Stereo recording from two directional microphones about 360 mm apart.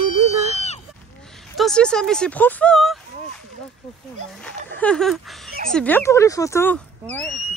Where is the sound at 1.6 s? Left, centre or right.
Centre.